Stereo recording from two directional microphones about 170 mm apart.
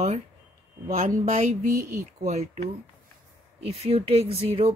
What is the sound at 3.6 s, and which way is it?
Speech, 35° right (ahead or behind).